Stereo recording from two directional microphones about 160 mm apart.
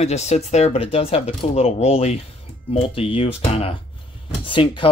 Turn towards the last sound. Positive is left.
turn(degrees=30)  # may be behind; listen again after turning